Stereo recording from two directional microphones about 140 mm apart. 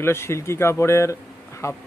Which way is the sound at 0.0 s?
20° left (ahead or behind).